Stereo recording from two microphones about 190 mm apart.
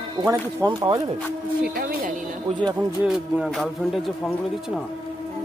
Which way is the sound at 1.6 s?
50° right (ahead or behind).